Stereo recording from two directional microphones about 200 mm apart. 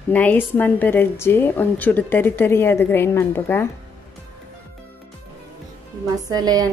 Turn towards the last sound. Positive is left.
turn(degrees=-20)  # may be behind; listen again after turning